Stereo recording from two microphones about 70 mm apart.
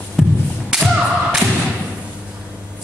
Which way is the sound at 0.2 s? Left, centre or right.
Centre.